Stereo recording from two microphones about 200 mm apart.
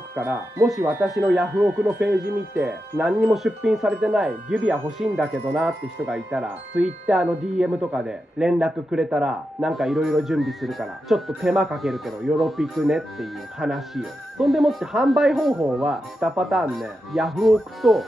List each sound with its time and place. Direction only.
0.1 s speech: 10° right (ahead or behind)